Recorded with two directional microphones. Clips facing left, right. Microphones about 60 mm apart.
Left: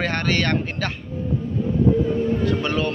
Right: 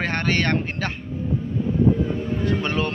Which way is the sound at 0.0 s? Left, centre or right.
Right.